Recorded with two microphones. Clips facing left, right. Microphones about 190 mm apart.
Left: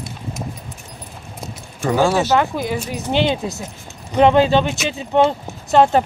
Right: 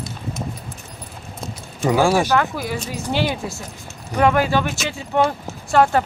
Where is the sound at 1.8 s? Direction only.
10° right (ahead or behind).